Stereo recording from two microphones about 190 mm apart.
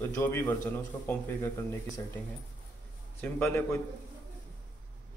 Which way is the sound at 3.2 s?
10° left (ahead or behind).